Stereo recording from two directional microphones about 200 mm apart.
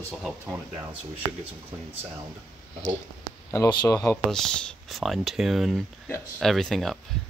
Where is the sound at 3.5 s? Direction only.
20° left (ahead or behind).